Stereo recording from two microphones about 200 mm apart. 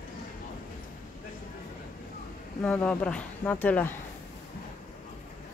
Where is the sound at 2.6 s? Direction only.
5° left (ahead or behind).